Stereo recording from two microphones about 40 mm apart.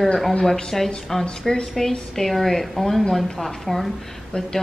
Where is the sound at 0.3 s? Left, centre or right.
Centre.